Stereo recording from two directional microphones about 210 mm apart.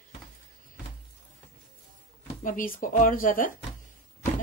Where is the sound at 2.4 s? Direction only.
40° left (ahead or behind).